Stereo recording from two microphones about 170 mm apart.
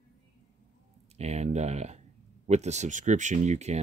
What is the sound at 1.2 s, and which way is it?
Speech, 40° right (ahead or behind).